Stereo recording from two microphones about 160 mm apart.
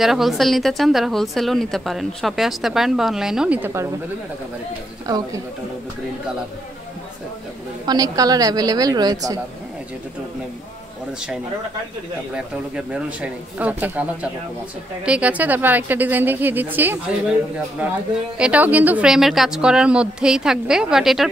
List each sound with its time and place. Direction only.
0.0 s a woman's voice: centre (ahead or behind)
5.0 s speech: 25° right (ahead or behind)
7.8 s a woman's voice: 25° right (ahead or behind)
12.4 s speech: 5° right (ahead or behind)
18.4 s a woman's voice: 10° right (ahead or behind)